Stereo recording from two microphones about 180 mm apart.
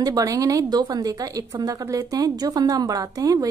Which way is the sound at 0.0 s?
20° right (ahead or behind).